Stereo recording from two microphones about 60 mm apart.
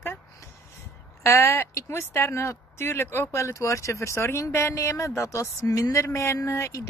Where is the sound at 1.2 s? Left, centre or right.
Left.